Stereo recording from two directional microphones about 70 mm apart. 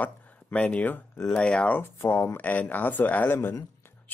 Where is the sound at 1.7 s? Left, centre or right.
Left.